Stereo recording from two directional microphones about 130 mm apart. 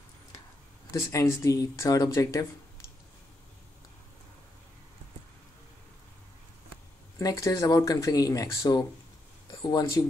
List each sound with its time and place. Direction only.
0.9 s speech: 25° left (ahead or behind)
7.2 s speech: 25° left (ahead or behind)